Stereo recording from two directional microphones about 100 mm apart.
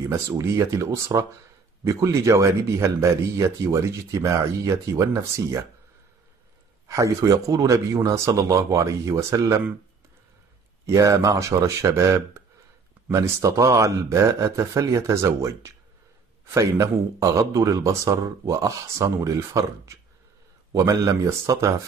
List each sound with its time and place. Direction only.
0.1 s speech: 30° right (ahead or behind)
6.9 s speech: 35° right (ahead or behind)
10.9 s speech: 30° right (ahead or behind)